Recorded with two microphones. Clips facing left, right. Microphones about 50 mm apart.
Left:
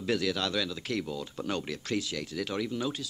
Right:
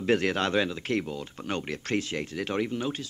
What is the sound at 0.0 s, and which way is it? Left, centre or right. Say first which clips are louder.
Speech: right 5 dB; right.